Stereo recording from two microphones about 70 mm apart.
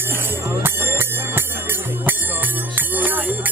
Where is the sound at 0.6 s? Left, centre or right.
Right.